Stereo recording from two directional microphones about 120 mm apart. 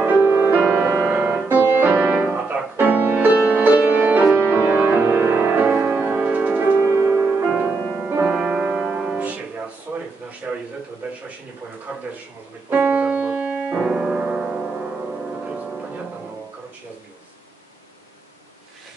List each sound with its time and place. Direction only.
0.0 s music: 20° right (ahead or behind)
12.6 s piano: 10° right (ahead or behind)